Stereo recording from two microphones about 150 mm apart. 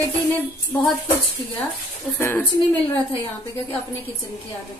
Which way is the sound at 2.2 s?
15° left (ahead or behind).